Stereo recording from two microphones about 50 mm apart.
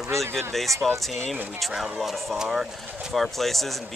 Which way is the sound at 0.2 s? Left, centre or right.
Centre.